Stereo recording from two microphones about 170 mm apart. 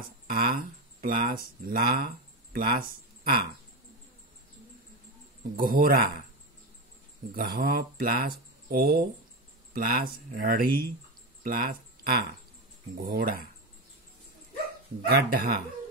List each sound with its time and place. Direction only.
0.3 s speech: 60° right (ahead or behind)
5.6 s speech: 60° right (ahead or behind)
7.3 s speech: 60° right (ahead or behind)
15.0 s speech: 65° right (ahead or behind)